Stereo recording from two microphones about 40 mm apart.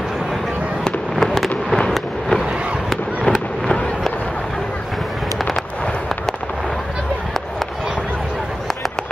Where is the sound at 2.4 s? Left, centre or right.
Right.